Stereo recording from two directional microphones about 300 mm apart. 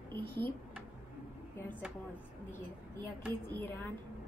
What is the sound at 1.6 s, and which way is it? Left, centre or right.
Speech, centre.